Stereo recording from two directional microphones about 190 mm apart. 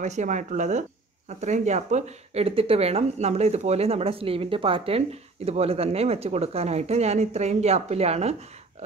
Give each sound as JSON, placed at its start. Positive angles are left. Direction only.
{"t": 0.0, "sound": "speech", "side_deg": -40}